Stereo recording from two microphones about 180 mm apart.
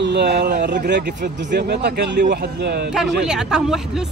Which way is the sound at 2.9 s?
5° right (ahead or behind).